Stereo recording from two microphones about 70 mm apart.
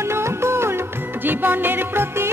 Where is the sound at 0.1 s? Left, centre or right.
Right.